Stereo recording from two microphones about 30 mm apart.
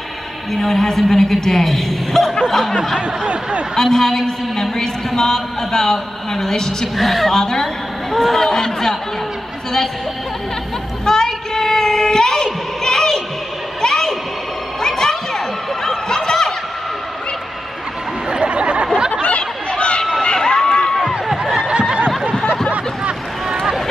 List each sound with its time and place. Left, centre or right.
0.5 s a man's voice: centre
3.7 s a man's voice: centre
7.0 s a woman's voice: centre
7.3 s a woman's voice: centre
7.6 s a man's voice: centre
11.1 s child singing: centre
12.8 s a sound: left
14.8 s snicker: centre
18.3 s a sound: right
19.2 s a sound: left
20.0 s crowd: centre
20.3 s run: left
21.5 s snicker: right
23.5 s run: centre